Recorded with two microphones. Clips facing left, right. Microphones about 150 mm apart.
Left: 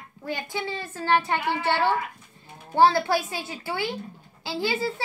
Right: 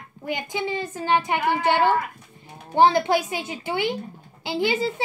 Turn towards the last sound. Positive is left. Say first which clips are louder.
# right 4 dB
turn(degrees=-20)  # may be behind; listen again after turning